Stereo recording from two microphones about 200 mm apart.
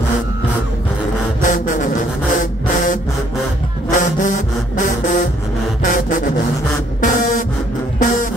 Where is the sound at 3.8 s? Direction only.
40° left (ahead or behind).